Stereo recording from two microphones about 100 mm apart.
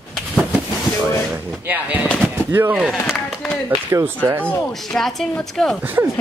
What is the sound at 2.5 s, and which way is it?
Speech, 20° right (ahead or behind).